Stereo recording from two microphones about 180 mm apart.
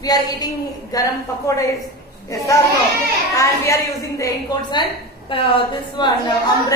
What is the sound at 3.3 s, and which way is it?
A woman's voice, 15° left (ahead or behind).